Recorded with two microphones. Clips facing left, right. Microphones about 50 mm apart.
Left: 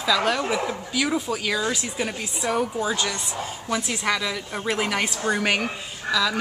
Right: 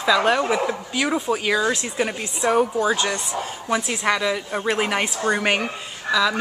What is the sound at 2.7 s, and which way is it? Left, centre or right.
Speech, centre.